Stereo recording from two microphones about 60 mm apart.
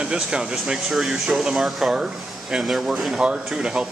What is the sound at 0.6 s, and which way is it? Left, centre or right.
Speech, centre.